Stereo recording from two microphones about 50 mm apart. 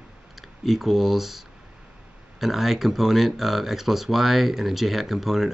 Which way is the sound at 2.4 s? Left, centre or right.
Centre.